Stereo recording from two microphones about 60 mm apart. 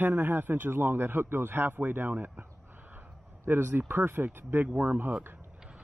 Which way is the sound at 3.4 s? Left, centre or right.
Right.